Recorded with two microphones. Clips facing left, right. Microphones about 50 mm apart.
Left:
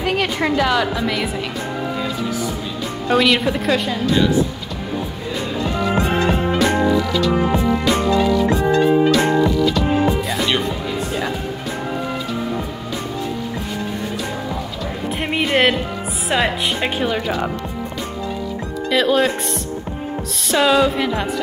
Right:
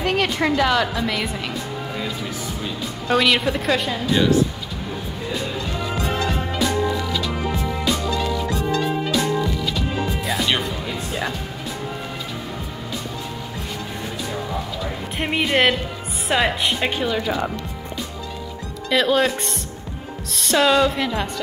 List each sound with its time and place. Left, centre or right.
0.0 s a sound: centre
0.6 s a woman's voice: centre
3.1 s a woman's voice: centre
5.6 s music: left
7.9 s music: left
8.2 s music: left
9.2 s music: left
9.6 s music: centre
9.8 s music: left
15.1 s music: centre
16.3 s a woman's voice: centre
18.9 s a woman's voice: centre
20.4 s a woman's voice: centre